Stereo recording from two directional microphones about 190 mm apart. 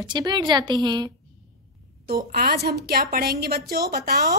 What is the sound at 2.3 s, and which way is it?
A woman's voice, 55° right (ahead or behind).